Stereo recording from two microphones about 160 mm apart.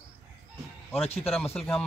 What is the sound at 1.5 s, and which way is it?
Speech, 5° left (ahead or behind).